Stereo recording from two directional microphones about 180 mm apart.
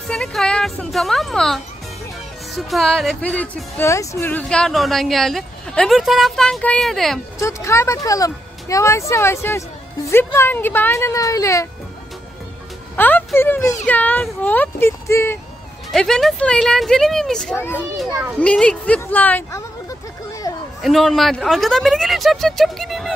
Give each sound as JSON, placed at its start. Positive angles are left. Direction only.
{"t": 0.1, "sound": "speech", "side_deg": 0}
{"t": 7.3, "sound": "speech", "side_deg": 15}
{"t": 12.9, "sound": "speech", "side_deg": 10}
{"t": 15.9, "sound": "speech", "side_deg": 0}
{"t": 20.4, "sound": "a sound", "side_deg": 20}
{"t": 20.8, "sound": "speech", "side_deg": 0}